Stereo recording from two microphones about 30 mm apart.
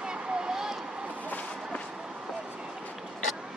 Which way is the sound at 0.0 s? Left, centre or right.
Right.